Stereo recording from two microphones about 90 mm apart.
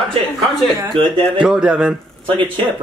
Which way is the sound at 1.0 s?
70° right (ahead or behind).